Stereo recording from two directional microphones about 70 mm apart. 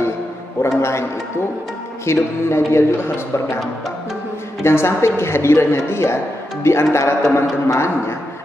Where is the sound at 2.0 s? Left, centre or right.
Left.